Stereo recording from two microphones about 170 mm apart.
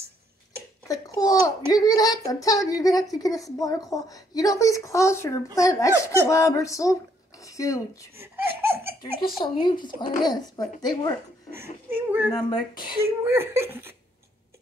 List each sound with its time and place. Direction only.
0.8 s a child's voice: 20° left (ahead or behind)
8.2 s laughter: 15° right (ahead or behind)
9.4 s a woman's voice: 25° left (ahead or behind)
11.5 s speech: 15° right (ahead or behind)
12.3 s a woman's voice: 25° left (ahead or behind)
13.2 s speech: 15° right (ahead or behind)